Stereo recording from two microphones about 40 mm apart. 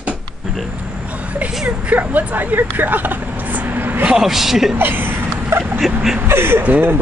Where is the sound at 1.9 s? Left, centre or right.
Right.